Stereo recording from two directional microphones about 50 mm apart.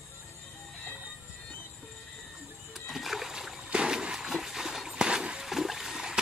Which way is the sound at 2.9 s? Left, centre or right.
Centre.